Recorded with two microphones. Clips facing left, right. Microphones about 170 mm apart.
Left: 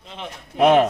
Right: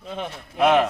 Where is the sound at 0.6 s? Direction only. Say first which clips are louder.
Left 3 dB; 20° left (ahead or behind).